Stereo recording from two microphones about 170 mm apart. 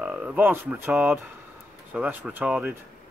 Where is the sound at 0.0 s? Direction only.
5° right (ahead or behind).